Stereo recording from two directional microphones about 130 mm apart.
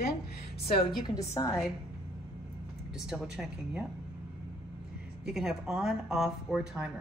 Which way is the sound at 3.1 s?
5° right (ahead or behind).